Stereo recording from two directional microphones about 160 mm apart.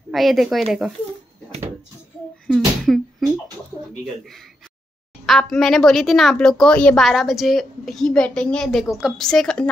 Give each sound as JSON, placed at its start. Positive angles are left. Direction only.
{"t": 0.1, "sound": "a woman's voice", "side_deg": 0}
{"t": 2.4, "sound": "a sound", "side_deg": 0}
{"t": 5.2, "sound": "a woman's voice", "side_deg": 0}